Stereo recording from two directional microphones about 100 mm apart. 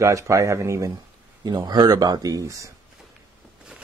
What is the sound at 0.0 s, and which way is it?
Speech, 30° right (ahead or behind).